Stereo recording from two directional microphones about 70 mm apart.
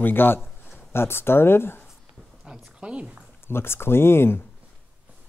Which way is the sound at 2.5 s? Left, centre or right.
Centre.